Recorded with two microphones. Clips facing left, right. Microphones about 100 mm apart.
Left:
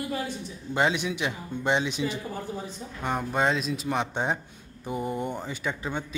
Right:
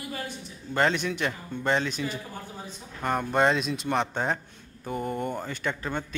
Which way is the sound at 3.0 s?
Centre (ahead or behind).